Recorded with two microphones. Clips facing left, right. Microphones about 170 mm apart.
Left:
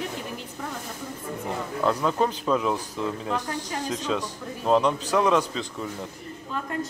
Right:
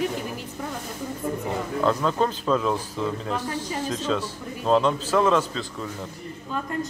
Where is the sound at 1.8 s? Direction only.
10° left (ahead or behind).